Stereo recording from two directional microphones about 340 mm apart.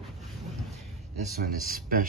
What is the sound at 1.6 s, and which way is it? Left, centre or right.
Speech, right.